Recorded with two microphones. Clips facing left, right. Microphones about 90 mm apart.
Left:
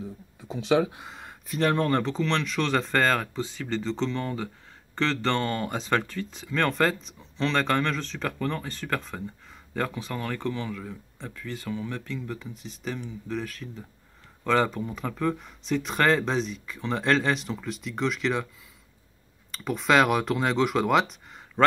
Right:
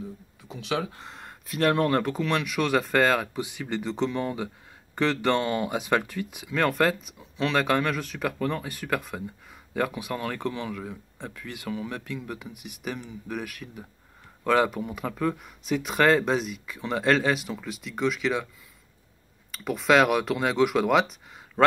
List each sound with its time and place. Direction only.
0.4 s a sound: 30° left (ahead or behind)
0.9 s speech: centre (ahead or behind)
19.5 s speech: 5° right (ahead or behind)